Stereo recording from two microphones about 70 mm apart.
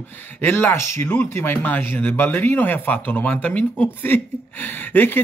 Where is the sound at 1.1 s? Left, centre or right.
Left.